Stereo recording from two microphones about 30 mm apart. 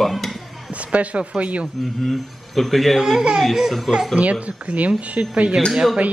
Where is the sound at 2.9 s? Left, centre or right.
Centre.